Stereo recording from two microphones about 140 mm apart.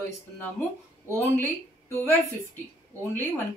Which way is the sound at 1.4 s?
20° left (ahead or behind).